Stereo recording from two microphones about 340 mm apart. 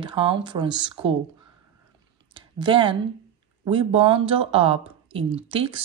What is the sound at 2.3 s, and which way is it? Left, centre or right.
Clicking, centre.